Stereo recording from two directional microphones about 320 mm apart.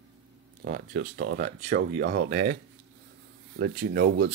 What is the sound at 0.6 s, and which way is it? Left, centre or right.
Speech, right.